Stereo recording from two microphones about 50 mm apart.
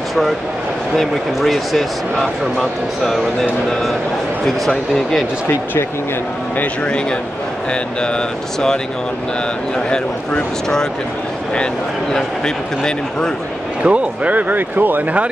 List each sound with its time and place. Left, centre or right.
1.1 s speech: centre
4.5 s speech: centre
6.6 s speech: left
9.8 s speech: centre
12.4 s speech: centre
13.8 s speech: right